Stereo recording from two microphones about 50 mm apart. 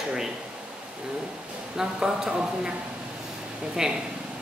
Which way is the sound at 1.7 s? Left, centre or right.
Centre.